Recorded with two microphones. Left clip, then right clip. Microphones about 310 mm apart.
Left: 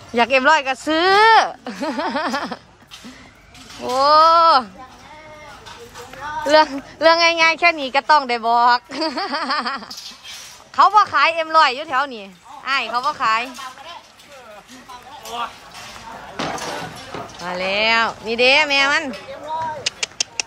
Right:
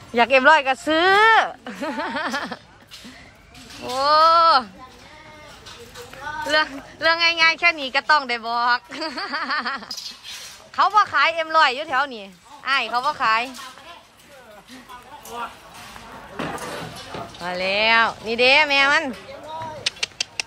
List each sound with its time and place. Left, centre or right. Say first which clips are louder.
0.1 s a woman's voice: even; centre
3.8 s a woman's voice: left 3 dB; centre
6.4 s a woman's voice: left 7 dB; centre
17.4 s a woman's voice: left 1 dB; centre
20.2 s a sound: left 6 dB; centre